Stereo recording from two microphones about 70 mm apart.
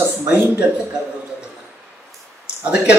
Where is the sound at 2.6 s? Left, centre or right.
Centre.